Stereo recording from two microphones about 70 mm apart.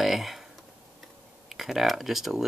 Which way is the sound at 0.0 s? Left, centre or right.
Centre.